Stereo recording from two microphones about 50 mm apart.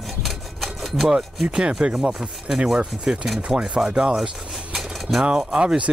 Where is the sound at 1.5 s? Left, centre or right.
Centre.